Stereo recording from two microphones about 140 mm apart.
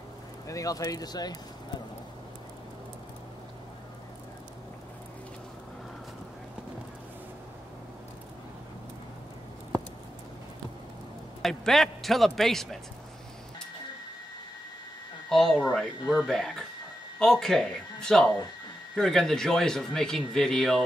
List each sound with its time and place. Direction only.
0.5 s speech: 25° left (ahead or behind)
11.4 s a man's voice: centre (ahead or behind)
15.2 s speech: 5° left (ahead or behind)